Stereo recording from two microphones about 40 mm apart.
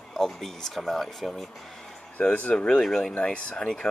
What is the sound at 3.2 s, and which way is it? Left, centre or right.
Speech, left.